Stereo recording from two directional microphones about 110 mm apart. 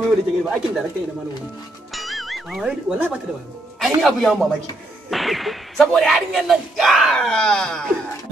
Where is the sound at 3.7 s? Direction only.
Centre (ahead or behind).